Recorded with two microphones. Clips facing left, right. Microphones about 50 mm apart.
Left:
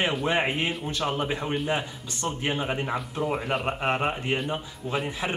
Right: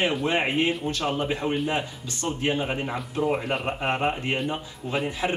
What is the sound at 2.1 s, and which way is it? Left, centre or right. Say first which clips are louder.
Speech: right 2 dB; centre.